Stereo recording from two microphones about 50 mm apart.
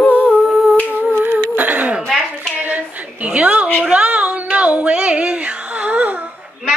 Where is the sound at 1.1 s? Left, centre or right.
Right.